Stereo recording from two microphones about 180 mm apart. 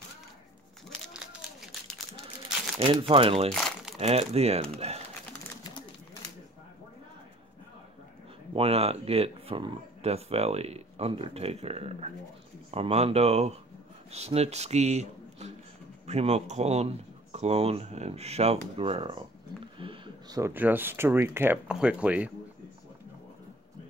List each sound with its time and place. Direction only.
0.8 s crumpling: centre (ahead or behind)
2.8 s speech: 30° right (ahead or behind)
3.5 s crumpling: centre (ahead or behind)
4.0 s speech: 35° right (ahead or behind)
8.5 s speech: 35° right (ahead or behind); by 22.3 s 5° right (ahead or behind)